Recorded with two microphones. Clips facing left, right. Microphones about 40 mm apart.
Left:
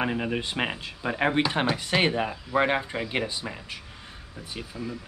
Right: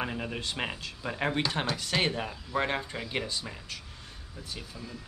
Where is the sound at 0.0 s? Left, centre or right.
Left.